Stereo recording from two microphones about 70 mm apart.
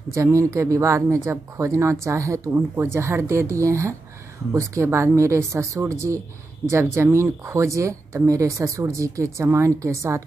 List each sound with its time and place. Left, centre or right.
0.1 s speech: right
2.5 s speech: right